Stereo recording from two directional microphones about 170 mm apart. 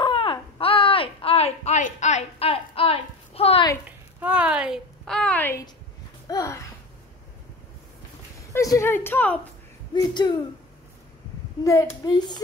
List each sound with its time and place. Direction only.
0.0 s a sound: 30° left (ahead or behind)
4.2 s a woman's voice: 10° right (ahead or behind); by 6.7 s 20° left (ahead or behind)
8.5 s speech: 15° left (ahead or behind)
9.9 s speech: 25° left (ahead or behind)
11.6 s speech: 20° left (ahead or behind)